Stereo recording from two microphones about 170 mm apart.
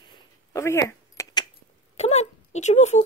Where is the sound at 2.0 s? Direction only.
40° left (ahead or behind).